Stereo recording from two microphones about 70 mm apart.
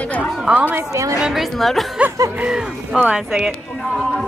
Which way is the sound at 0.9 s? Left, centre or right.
Right.